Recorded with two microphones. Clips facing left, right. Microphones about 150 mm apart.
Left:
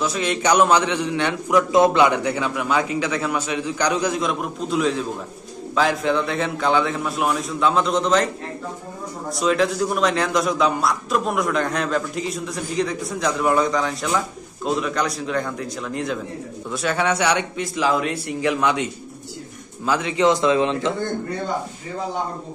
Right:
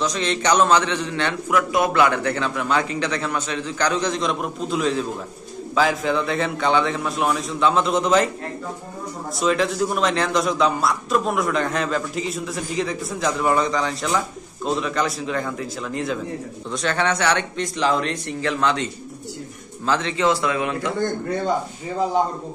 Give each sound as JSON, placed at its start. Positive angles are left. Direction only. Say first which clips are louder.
{"t": 0.0, "sound": "a man's voice", "louder": "left 1 dB", "side_deg": 5}
{"t": 9.3, "sound": "a man's voice", "louder": "left 1 dB", "side_deg": 0}